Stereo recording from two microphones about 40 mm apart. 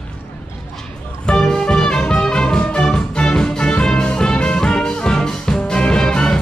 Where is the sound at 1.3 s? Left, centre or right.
Centre.